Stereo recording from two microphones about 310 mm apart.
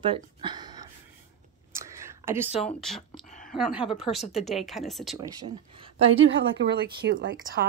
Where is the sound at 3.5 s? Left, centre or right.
Centre.